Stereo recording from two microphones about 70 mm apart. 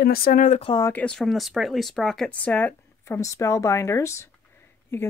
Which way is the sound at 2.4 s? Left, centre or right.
Left.